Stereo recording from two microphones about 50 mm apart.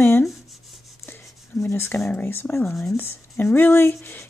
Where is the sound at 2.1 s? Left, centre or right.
Left.